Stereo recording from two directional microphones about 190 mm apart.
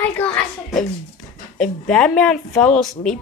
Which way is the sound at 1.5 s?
5° left (ahead or behind).